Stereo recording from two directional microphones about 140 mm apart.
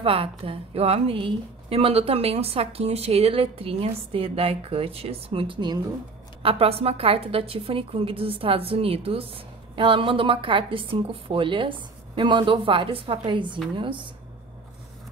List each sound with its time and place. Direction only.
0.0 s a woman's voice: 40° right (ahead or behind)